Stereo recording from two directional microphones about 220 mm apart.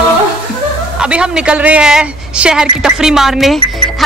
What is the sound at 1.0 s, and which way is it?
A woman's voice, 5° right (ahead or behind).